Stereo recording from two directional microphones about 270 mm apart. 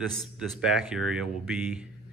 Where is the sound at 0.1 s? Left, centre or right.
Centre.